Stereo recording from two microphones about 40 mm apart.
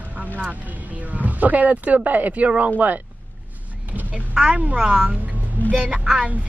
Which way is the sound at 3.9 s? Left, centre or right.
Right.